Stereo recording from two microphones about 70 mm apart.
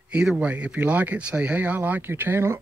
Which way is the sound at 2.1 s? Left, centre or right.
Right.